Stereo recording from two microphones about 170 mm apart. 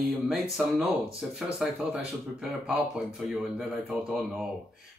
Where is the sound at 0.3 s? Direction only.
Centre (ahead or behind).